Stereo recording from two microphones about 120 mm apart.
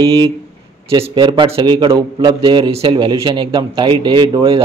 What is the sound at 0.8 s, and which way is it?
A man's voice, 45° right (ahead or behind).